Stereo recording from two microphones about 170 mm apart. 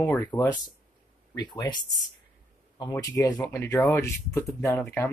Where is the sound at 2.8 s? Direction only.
15° left (ahead or behind).